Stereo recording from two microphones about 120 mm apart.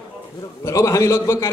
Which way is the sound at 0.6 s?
25° left (ahead or behind).